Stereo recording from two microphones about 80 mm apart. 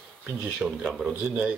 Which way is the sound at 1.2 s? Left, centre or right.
Centre.